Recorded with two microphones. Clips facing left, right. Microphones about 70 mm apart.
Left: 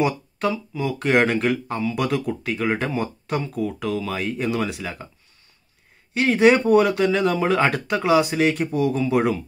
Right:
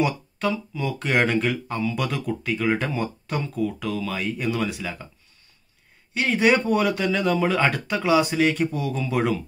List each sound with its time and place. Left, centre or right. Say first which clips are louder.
0.0 s speech: left 2 dB; left
6.1 s speech: left 4 dB; left